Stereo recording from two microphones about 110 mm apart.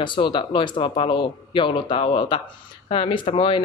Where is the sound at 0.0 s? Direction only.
45° left (ahead or behind).